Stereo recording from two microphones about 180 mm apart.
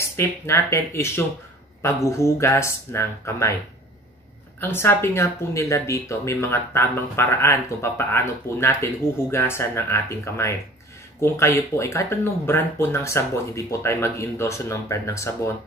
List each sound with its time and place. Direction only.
0.2 s speech: 15° left (ahead or behind)
4.6 s speech: 15° left (ahead or behind)